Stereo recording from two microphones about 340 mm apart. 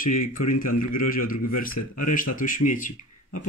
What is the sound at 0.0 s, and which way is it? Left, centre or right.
Speech, left.